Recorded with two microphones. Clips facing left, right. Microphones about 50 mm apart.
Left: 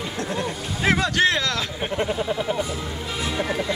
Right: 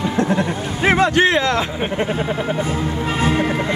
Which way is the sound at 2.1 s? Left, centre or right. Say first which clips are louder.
Right 3 dB; right.